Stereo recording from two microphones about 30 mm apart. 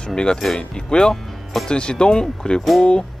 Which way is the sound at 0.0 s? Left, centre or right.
Left.